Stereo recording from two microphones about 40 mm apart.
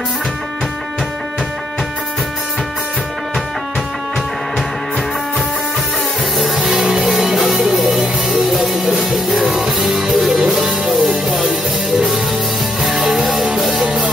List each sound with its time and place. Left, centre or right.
6.3 s music: centre
6.6 s music: centre
12.8 s music: centre